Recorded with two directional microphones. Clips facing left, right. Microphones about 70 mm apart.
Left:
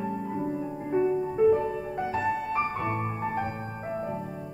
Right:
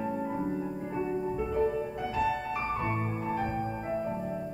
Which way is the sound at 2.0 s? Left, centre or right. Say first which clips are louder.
Left 4 dB; left.